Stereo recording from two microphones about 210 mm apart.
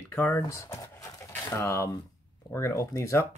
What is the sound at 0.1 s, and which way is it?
Speech, 10° left (ahead or behind).